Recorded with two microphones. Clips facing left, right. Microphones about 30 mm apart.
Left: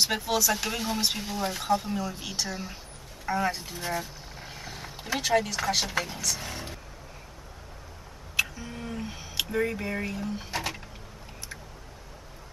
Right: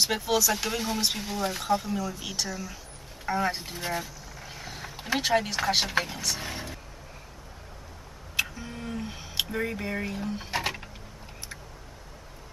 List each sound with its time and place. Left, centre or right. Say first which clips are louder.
0.0 s speech: right 1 dB; centre
1.9 s speech: even; left
2.2 s speech: even; centre
2.5 s speech: even; left
3.3 s speech: even; centre
4.5 s roaring cats: right 1 dB; centre
4.9 s a sound: right 3 dB; centre
5.2 s speech: left 1 dB; centre
8.4 s a sound: left 1 dB; centre
9.2 s a sound: right 2 dB; centre
9.5 s speech: left 2 dB; centre
10.5 s a sound: right 5 dB; centre